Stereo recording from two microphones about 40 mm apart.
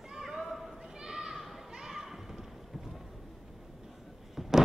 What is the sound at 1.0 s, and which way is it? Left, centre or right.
Children playing, centre.